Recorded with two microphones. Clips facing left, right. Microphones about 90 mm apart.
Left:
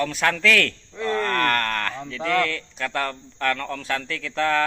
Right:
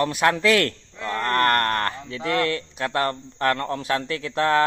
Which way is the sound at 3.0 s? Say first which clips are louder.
Right 4 dB; 35° right (ahead or behind).